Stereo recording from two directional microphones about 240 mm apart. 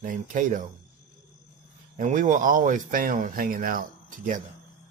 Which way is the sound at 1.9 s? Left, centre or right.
Right.